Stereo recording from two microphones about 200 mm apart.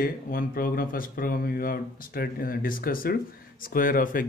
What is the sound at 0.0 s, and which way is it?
Speech, 45° left (ahead or behind).